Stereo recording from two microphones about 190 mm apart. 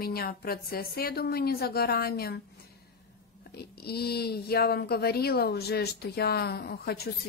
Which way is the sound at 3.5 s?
55° left (ahead or behind).